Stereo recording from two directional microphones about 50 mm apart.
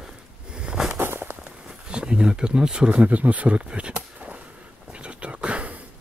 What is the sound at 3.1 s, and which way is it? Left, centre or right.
Speech, right.